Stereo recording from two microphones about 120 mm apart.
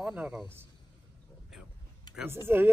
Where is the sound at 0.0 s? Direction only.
10° right (ahead or behind).